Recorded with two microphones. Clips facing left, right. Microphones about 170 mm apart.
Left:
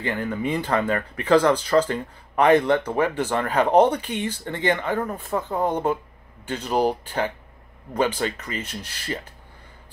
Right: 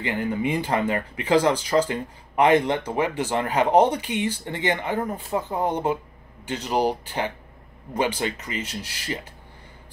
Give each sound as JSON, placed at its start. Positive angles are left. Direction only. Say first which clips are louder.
{"t": 0.0, "sound": "speech", "louder": "right 1 dB", "side_deg": -15}
{"t": 6.4, "sound": "speech", "louder": "even", "side_deg": 50}
{"t": 6.7, "sound": "speech", "louder": "left 1 dB", "side_deg": -10}